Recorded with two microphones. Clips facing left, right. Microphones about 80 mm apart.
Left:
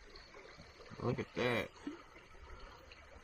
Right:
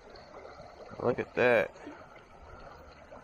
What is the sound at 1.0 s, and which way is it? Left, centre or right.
Speech, right.